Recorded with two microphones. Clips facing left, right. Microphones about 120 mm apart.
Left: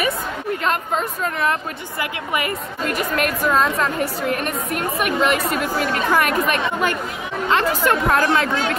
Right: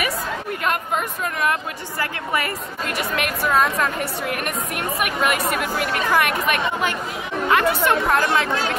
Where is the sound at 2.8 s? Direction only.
40° left (ahead or behind).